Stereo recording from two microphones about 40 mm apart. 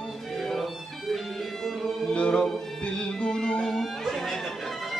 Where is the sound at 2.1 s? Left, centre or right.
Left.